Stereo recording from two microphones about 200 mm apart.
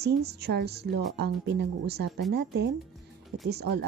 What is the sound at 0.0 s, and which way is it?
Speech, 55° right (ahead or behind).